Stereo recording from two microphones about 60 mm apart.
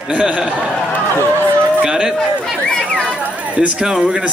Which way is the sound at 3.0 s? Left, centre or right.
Centre.